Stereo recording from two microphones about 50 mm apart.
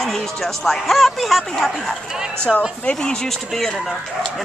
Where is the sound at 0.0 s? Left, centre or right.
Centre.